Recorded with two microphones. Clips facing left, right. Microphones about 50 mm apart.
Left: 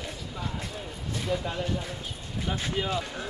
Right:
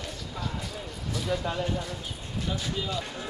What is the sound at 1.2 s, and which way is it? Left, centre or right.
Speech, centre.